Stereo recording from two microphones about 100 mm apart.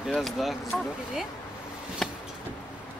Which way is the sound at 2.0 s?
5° left (ahead or behind).